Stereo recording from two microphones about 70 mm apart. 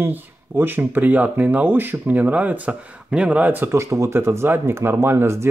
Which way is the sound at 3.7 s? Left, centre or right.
Right.